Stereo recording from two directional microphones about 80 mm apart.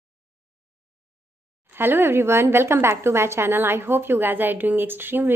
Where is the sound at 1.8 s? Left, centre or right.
Right.